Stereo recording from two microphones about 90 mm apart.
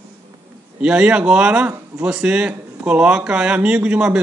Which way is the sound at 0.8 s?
10° right (ahead or behind).